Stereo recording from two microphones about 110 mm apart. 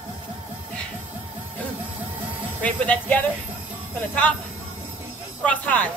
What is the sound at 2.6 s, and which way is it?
Speech, 10° left (ahead or behind).